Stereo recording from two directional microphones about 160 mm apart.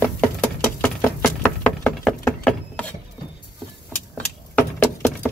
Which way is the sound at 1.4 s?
5° left (ahead or behind).